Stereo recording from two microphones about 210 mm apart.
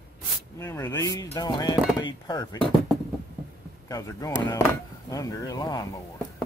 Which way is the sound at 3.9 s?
15° left (ahead or behind).